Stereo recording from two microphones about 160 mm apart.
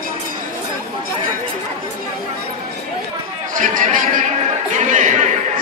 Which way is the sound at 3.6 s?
55° right (ahead or behind).